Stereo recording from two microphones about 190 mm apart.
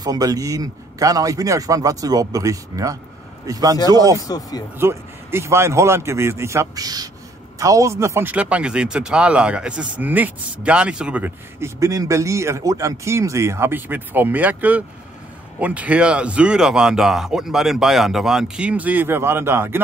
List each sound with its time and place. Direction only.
0.0 s speech: 20° right (ahead or behind)
4.2 s speech: 20° left (ahead or behind)
4.7 s speech: 15° right (ahead or behind)